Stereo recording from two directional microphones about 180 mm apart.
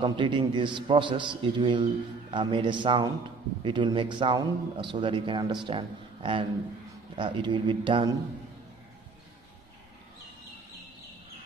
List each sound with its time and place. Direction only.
0.0 s a man's voice: 25° right (ahead or behind)